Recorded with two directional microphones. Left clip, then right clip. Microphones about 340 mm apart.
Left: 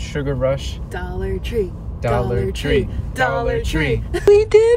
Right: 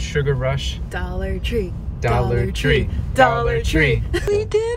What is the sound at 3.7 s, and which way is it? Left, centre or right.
Speech, centre.